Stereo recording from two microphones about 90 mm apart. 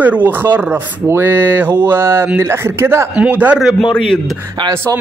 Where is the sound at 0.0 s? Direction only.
20° right (ahead or behind).